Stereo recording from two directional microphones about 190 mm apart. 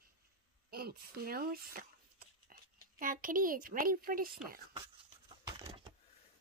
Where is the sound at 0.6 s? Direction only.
55° right (ahead or behind).